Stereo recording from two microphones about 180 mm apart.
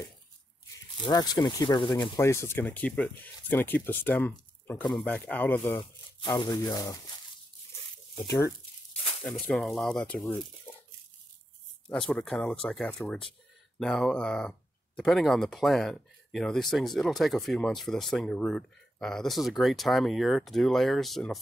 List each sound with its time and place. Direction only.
1.0 s speech: 20° left (ahead or behind)
2.1 s speech: 15° left (ahead or behind)
5.8 s speech: 25° left (ahead or behind)
9.2 s speech: centre (ahead or behind)
11.9 s speech: 5° left (ahead or behind)